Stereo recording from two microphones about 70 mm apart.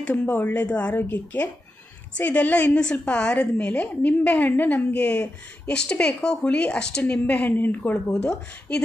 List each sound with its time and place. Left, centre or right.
0.1 s a woman's voice: left
8.1 s a woman's voice: centre